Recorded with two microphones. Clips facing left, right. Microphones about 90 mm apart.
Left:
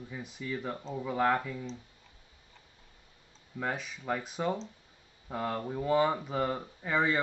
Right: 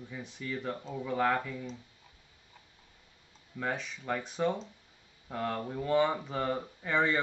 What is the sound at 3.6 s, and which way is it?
Speech, 5° left (ahead or behind).